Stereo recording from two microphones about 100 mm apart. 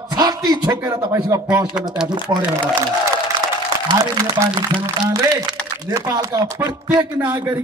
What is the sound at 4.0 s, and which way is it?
Speech, 35° right (ahead or behind).